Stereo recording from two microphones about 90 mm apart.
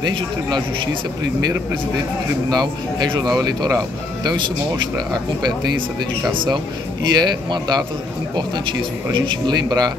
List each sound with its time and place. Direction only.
2.5 s speech: 50° right (ahead or behind)
9.1 s speech: 65° right (ahead or behind)